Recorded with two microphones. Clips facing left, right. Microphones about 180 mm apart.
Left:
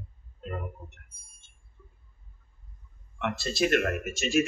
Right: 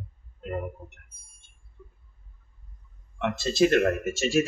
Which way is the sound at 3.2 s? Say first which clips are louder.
Right 5 dB; 20° right (ahead or behind).